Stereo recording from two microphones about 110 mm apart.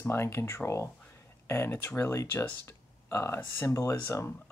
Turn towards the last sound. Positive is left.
turn(degrees=30)  # may be behind; listen again after turning